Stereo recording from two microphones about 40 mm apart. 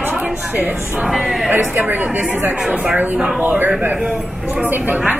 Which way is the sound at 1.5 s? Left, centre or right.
Right.